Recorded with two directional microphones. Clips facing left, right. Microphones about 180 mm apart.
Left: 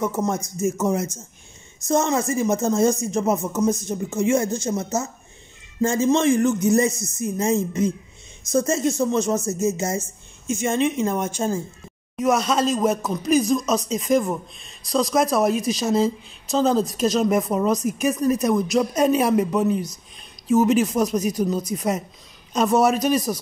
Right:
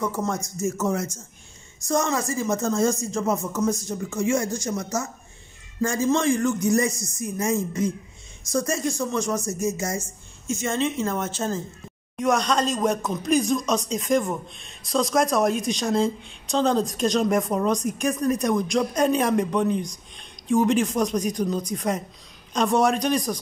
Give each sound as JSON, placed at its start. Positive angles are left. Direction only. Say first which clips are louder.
{"t": 0.0, "sound": "speech", "louder": "left 3 dB", "side_deg": 20}